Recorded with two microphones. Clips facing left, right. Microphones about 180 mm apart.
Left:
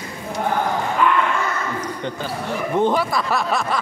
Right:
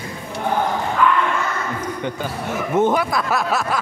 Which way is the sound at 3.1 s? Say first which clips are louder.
Right 1 dB; 5° right (ahead or behind).